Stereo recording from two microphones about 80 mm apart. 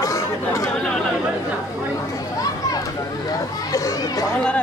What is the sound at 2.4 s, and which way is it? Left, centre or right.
Children playing, left.